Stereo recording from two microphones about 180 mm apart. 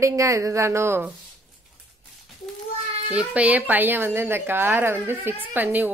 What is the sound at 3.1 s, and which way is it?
Speech, 5° right (ahead or behind).